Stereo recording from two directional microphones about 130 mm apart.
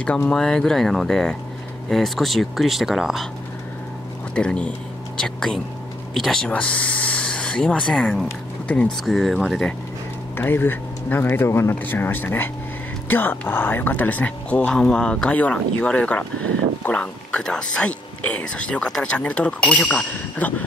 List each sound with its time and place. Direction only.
0.0 s speech: 10° left (ahead or behind)
4.4 s speech: 10° left (ahead or behind)
10.3 s speech: 15° left (ahead or behind)